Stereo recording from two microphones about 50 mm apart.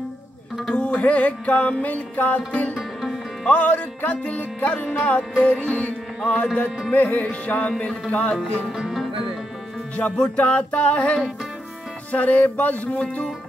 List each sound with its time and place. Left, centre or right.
0.7 s music: left
8.7 s music: centre
10.0 s music: centre